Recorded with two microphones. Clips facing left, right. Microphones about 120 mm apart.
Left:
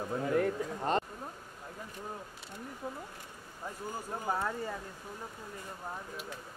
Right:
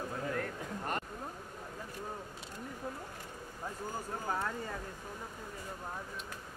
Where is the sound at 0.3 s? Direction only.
20° left (ahead or behind).